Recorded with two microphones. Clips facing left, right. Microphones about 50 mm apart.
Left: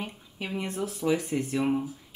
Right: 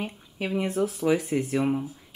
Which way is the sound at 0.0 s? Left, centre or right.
Centre.